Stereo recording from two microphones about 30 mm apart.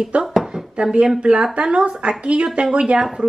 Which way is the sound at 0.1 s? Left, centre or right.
Right.